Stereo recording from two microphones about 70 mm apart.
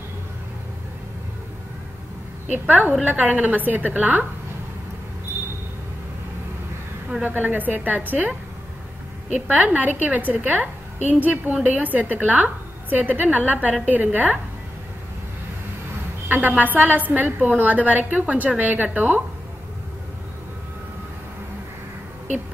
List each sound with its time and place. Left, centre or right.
2.6 s a woman's voice: right
7.2 s a woman's voice: right
9.5 s a woman's voice: right
16.3 s a woman's voice: right